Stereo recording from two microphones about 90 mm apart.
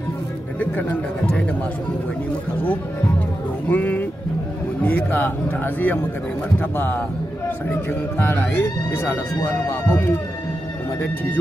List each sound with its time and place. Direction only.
3.6 s speech: 20° left (ahead or behind)